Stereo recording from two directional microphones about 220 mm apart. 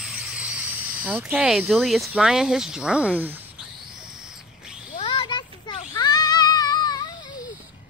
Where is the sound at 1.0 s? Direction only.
5° right (ahead or behind).